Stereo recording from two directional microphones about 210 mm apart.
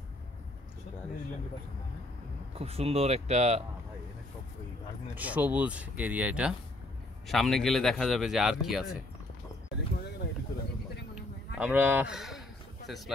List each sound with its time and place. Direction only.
2.5 s speech: 30° right (ahead or behind)
5.1 s a man's voice: 5° right (ahead or behind)
11.5 s speech: 5° right (ahead or behind)